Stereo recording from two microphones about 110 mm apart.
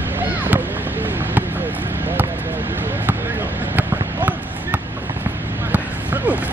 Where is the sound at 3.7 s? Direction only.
15° right (ahead or behind).